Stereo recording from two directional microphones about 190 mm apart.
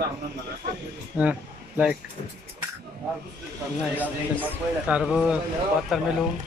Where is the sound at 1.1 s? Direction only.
10° right (ahead or behind).